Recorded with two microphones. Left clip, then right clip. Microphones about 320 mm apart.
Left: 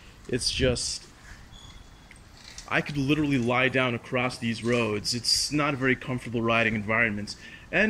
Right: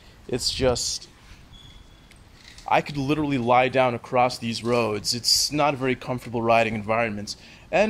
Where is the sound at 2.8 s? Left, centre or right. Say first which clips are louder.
Right 1 dB; right.